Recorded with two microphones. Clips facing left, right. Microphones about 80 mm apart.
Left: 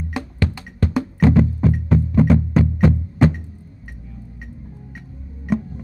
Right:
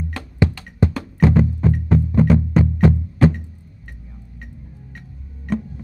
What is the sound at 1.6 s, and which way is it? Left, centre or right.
Music, centre.